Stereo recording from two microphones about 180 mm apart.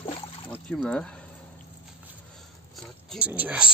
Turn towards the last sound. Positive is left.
turn(degrees=-5)  # may be behind; listen again after turning